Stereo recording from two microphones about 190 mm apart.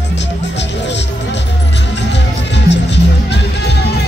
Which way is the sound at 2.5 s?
65° left (ahead or behind).